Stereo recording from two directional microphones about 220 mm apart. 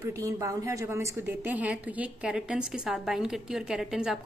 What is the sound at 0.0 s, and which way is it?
A woman's voice, 15° right (ahead or behind).